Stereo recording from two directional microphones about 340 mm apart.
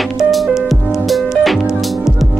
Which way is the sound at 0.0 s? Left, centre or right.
Centre.